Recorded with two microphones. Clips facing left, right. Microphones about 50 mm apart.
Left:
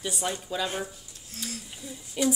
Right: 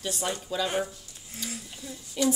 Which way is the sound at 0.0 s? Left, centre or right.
Centre.